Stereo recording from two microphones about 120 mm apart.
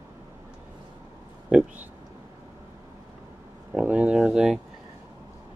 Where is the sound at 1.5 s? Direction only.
15° right (ahead or behind).